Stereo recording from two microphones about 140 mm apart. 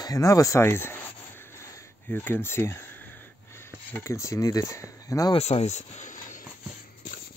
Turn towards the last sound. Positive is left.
turn(degrees=70)  # may be behind; listen again after turning